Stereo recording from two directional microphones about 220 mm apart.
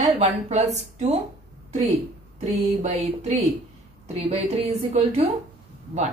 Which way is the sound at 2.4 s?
30° right (ahead or behind).